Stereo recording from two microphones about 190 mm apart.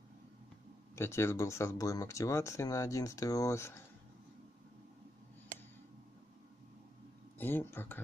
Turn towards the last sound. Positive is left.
turn(degrees=10)  # may be behind; listen again after turning